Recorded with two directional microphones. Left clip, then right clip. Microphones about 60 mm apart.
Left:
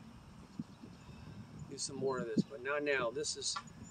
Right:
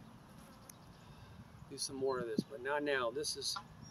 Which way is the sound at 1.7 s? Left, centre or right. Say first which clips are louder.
Even; right.